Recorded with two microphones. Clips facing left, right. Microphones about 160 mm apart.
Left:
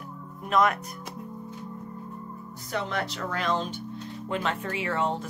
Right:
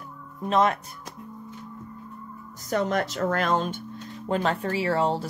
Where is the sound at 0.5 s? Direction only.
30° right (ahead or behind).